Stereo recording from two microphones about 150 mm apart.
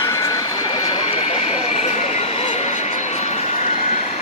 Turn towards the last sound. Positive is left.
turn(degrees=50)  # may be behind; listen again after turning